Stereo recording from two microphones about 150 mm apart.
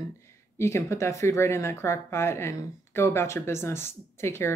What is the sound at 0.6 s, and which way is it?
Speech, 20° left (ahead or behind).